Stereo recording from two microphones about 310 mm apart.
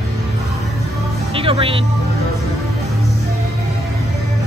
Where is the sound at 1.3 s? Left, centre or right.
Centre.